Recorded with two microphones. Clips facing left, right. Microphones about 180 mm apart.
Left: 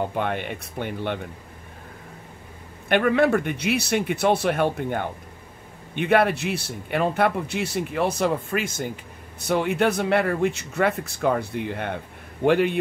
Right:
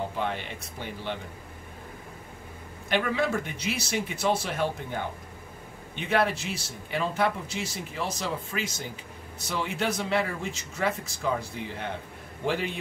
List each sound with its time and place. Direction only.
0.1 s speech: 60° left (ahead or behind)
2.9 s speech: 60° left (ahead or behind)